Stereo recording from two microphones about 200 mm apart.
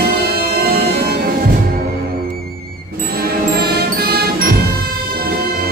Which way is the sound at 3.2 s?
50° right (ahead or behind).